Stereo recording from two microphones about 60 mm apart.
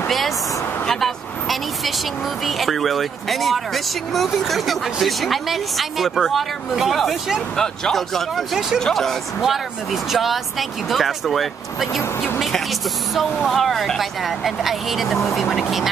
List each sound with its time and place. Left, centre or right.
0.8 s vehicle: centre
2.4 s speech: centre
7.5 s speech: centre
10.1 s speech: centre